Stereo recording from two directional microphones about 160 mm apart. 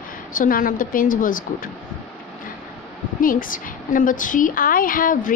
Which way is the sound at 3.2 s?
60° left (ahead or behind).